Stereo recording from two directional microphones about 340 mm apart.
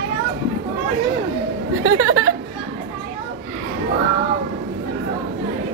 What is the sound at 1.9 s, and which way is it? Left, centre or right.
Speech, right.